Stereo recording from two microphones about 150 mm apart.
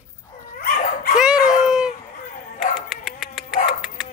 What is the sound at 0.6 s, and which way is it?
Dog, 75° left (ahead or behind).